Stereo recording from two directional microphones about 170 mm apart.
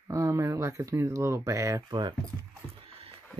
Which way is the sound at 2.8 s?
35° right (ahead or behind).